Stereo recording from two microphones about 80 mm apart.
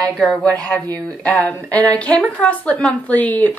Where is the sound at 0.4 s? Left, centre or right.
Centre.